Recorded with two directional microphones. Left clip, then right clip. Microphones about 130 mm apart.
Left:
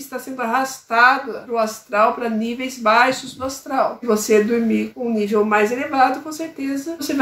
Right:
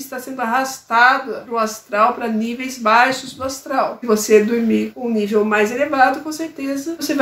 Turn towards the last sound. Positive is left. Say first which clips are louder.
# right 2 dB
turn(degrees=-20)  # may be behind; listen again after turning